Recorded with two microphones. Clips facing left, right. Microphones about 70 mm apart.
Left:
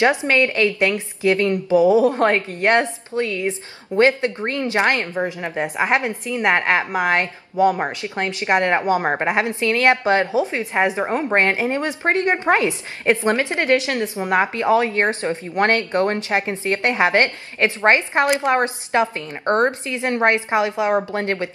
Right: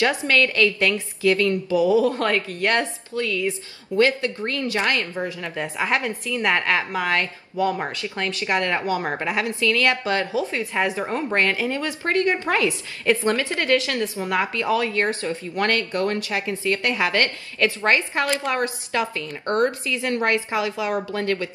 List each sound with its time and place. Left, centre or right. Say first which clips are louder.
0.0 s a woman's voice: left 3 dB; left